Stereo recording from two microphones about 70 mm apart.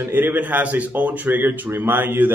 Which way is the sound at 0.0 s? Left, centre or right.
Right.